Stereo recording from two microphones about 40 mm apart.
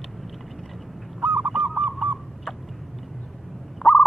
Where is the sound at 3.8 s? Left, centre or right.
Centre.